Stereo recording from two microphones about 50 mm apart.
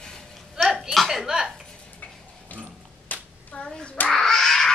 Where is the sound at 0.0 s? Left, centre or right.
Centre.